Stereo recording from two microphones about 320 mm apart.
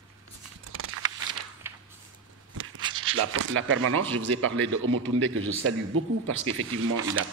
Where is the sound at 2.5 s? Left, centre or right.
Right.